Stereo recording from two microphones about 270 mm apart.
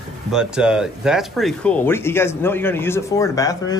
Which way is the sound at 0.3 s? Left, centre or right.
Centre.